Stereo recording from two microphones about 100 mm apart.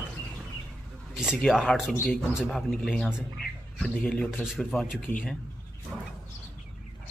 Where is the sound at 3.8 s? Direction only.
10° left (ahead or behind).